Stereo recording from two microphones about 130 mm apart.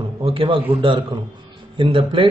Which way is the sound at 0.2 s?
40° right (ahead or behind).